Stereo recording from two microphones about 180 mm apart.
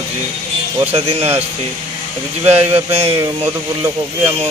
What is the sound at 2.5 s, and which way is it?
Speech, 35° right (ahead or behind).